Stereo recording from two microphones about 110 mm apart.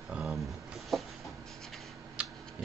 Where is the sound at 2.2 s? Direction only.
10° right (ahead or behind).